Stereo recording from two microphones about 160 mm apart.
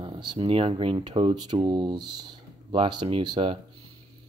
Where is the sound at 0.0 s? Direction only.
30° right (ahead or behind).